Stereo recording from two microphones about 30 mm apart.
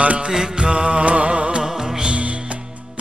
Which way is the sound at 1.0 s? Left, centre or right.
Right.